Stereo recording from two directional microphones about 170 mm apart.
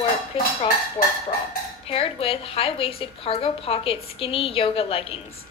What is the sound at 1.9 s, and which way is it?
A woman's voice, 35° left (ahead or behind).